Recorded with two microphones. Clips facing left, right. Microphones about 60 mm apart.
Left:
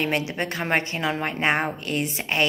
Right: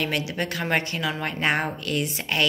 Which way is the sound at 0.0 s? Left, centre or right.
Left.